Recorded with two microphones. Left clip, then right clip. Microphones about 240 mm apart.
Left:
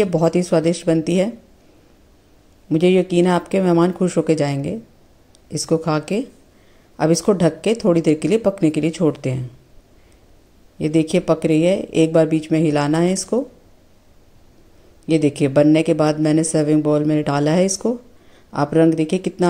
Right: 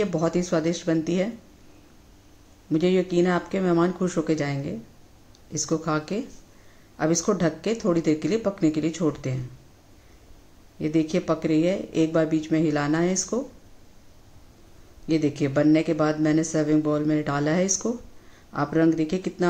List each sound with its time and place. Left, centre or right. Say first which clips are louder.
0.0 s speech: left 7 dB; left
2.7 s speech: left 7 dB; left
10.8 s speech: left 6 dB; left
15.0 s speech: left 7 dB; left